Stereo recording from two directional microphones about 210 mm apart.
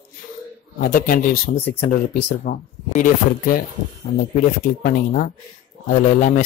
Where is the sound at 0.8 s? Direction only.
40° left (ahead or behind).